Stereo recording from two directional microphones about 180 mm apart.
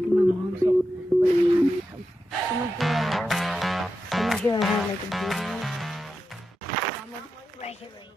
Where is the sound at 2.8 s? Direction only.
Centre (ahead or behind).